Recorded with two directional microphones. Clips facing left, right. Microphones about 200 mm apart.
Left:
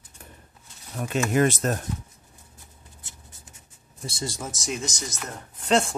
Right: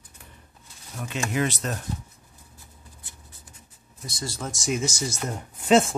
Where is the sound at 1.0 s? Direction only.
50° left (ahead or behind).